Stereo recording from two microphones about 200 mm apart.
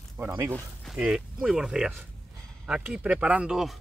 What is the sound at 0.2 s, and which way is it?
Speech, 10° right (ahead or behind).